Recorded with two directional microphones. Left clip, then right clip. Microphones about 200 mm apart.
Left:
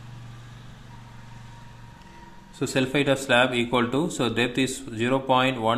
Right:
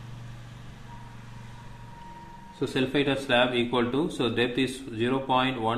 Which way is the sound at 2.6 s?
35° left (ahead or behind).